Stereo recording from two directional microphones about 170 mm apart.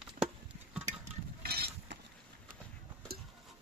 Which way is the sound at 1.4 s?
70° right (ahead or behind).